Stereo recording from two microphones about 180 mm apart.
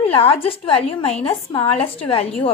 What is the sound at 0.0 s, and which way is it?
A woman's voice, 35° left (ahead or behind).